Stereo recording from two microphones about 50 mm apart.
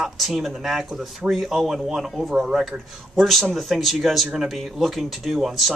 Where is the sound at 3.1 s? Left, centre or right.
Centre.